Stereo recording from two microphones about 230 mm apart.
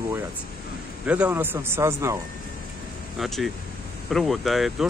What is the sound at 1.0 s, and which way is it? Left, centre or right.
Speech, centre.